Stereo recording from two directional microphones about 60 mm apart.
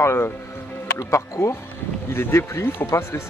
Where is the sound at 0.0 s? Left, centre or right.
Left.